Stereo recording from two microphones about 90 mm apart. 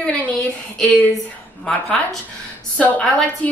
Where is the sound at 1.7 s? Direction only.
5° left (ahead or behind).